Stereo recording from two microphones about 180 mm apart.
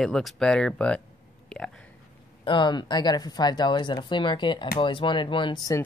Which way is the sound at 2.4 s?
25° left (ahead or behind).